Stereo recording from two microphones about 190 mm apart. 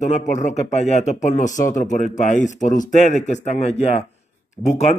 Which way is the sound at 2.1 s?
40° left (ahead or behind).